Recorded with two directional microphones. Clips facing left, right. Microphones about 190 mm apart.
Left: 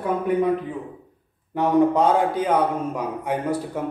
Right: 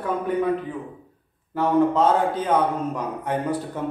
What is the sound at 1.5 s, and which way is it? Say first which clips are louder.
A man's voice: left 1 dB; 15° left (ahead or behind).